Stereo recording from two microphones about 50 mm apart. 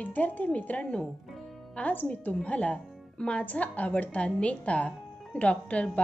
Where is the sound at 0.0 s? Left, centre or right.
Left.